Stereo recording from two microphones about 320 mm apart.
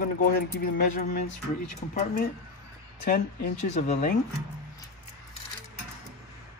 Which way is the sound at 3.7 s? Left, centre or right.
Left.